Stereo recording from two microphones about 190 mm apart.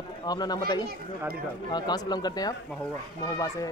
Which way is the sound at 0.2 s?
20° left (ahead or behind).